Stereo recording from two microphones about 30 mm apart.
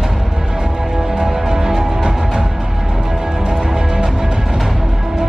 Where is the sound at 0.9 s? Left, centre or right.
Centre.